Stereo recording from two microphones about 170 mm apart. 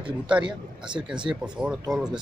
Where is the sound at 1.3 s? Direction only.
5° right (ahead or behind).